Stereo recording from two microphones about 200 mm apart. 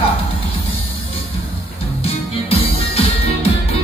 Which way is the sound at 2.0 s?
30° left (ahead or behind).